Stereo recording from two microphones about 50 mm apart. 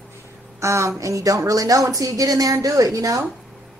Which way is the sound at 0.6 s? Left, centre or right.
Right.